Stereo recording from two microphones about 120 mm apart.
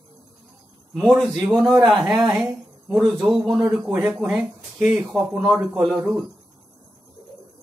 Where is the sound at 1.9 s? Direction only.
5° right (ahead or behind).